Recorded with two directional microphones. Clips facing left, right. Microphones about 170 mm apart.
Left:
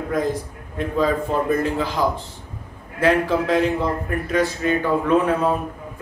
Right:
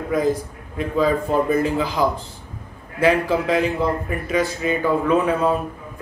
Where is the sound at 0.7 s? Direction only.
5° right (ahead or behind).